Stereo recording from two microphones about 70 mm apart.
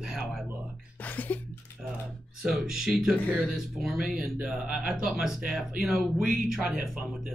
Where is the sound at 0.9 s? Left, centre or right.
Left.